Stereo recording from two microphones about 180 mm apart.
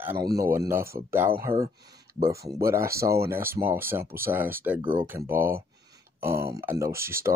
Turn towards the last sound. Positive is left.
turn(degrees=-15)  # may be behind; listen again after turning